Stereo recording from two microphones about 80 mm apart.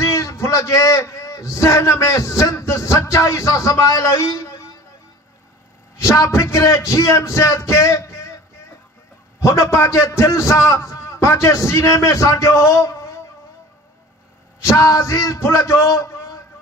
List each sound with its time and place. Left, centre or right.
0.0 s a man's voice: left
5.9 s a man's voice: left
9.4 s a man's voice: left
14.6 s a man's voice: left